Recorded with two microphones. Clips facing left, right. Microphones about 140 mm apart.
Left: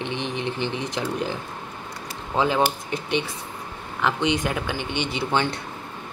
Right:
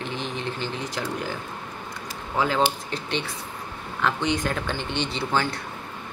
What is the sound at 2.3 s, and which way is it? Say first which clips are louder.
Speech: left 2 dB; 20° left (ahead or behind).